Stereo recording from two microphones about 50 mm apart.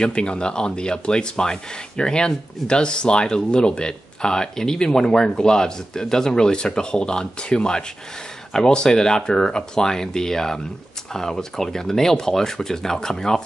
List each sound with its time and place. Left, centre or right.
0.0 s speech: centre